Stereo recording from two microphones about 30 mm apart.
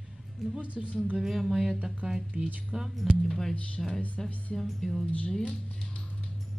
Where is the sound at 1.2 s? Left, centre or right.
Centre.